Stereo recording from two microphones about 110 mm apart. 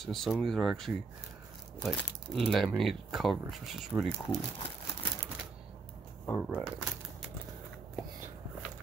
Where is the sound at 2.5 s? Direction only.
5° left (ahead or behind).